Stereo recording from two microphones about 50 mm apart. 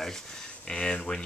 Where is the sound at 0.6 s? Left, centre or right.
Centre.